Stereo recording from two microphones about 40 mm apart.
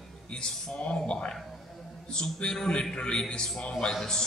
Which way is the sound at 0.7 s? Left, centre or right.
Left.